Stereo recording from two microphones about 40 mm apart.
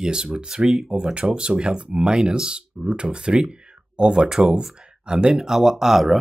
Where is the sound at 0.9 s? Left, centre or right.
Right.